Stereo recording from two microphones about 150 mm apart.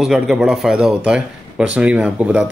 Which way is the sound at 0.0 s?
5° right (ahead or behind).